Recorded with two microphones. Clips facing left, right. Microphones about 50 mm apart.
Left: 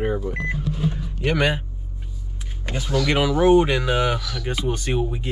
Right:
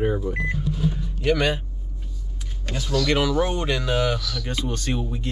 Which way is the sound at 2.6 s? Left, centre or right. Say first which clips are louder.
Left 1 dB; centre.